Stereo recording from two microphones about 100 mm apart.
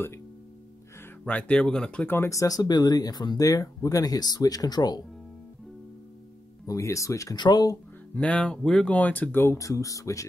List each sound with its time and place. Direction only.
1.2 s speech: 10° left (ahead or behind)
2.2 s speech: 35° left (ahead or behind)
6.6 s speech: 30° left (ahead or behind)
7.3 s speech: 45° left (ahead or behind)
8.1 s speech: 10° left (ahead or behind); by 10.2 s 35° left (ahead or behind)